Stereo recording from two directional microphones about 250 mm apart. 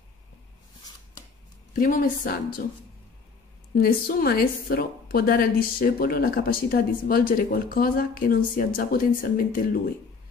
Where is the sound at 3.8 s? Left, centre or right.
Left.